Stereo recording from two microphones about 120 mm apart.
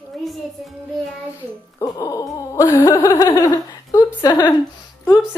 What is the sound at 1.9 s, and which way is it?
Speech, 30° left (ahead or behind).